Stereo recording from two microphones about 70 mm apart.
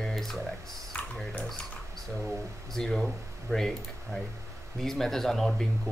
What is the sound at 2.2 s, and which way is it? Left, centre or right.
Speech, centre.